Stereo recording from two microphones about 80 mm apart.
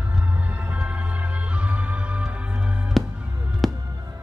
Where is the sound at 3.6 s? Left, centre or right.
Centre.